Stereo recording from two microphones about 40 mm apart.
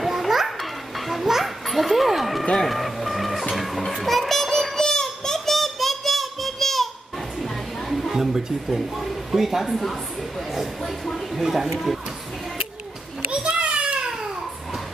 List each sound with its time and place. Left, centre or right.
0.0 s children playing: centre
2.5 s music: centre
8.1 s speech: centre
13.3 s children playing: right